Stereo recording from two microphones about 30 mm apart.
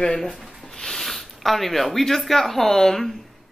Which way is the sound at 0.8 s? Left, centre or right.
Centre.